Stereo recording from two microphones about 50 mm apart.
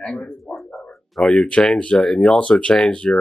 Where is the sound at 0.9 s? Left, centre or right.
Centre.